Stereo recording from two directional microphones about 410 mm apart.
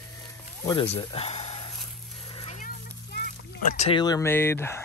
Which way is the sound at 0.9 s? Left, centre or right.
Centre.